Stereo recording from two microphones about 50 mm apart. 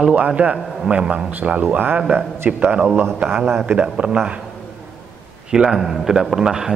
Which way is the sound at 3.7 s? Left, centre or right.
Right.